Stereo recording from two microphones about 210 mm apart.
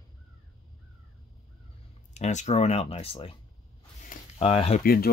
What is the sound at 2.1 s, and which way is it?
Speech, 35° left (ahead or behind).